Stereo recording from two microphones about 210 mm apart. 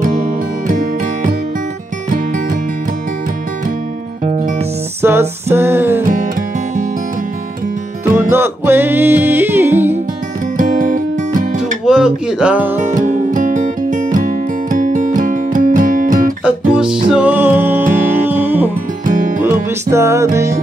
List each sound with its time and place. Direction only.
0.0 s music: 40° right (ahead or behind)
4.2 s music: 35° right (ahead or behind)
5.0 s music: 10° right (ahead or behind)
6.0 s music: 40° right (ahead or behind)
8.0 s music: 10° right (ahead or behind)
10.6 s music: 40° right (ahead or behind)
11.8 s music: 5° right (ahead or behind)
13.0 s music: 35° right (ahead or behind)
16.4 s music: 5° right (ahead or behind)
19.0 s music: 40° right (ahead or behind)
19.4 s music: 10° right (ahead or behind)